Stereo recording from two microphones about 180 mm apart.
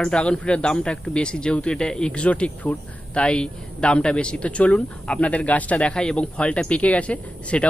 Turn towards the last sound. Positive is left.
turn(degrees=5)  # may be behind; listen again after turning